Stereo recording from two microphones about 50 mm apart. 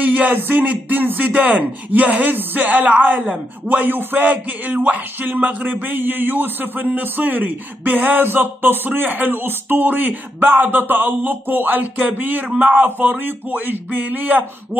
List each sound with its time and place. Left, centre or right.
0.0 s speech: right